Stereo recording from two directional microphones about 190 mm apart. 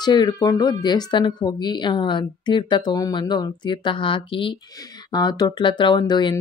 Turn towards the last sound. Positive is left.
turn(degrees=25)  # may be behind; listen again after turning